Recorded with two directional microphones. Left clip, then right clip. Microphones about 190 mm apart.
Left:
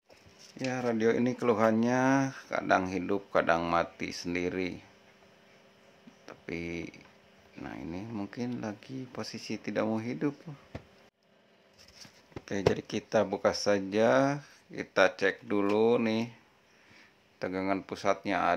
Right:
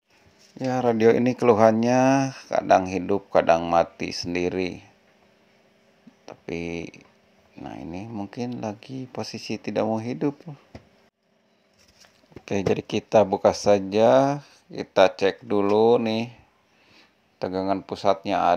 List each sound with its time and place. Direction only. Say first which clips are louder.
0.7 s speech: right 10 dB; 25° right (ahead or behind)
6.2 s speech: right 7 dB; 20° right (ahead or behind)
12.4 s speech: right 5 dB; 25° right (ahead or behind)